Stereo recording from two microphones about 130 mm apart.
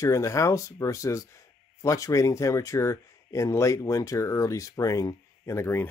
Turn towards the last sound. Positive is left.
turn(degrees=15)  # may be behind; listen again after turning